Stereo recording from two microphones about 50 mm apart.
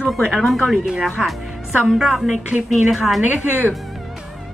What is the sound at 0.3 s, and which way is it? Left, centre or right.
Speech, centre.